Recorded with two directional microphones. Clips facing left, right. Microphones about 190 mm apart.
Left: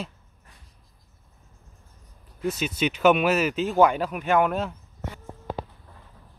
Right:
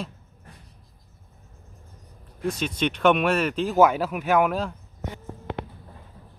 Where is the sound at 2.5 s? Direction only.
5° left (ahead or behind).